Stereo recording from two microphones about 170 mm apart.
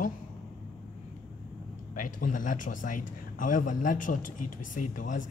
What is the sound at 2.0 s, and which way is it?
A man's voice, 50° left (ahead or behind).